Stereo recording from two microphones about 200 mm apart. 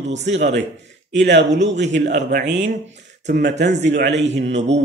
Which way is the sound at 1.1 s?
60° right (ahead or behind).